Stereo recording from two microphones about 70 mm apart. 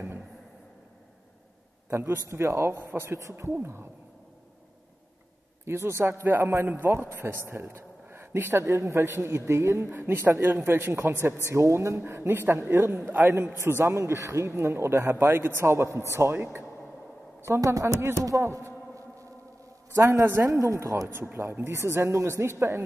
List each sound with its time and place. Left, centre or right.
1.9 s a man's voice: right
5.7 s a man's voice: right
8.6 s a man's voice: right
12.0 s a man's voice: right
17.5 s speech: right
18.4 s a sound: right
20.0 s speech: right
21.1 s a man's voice: right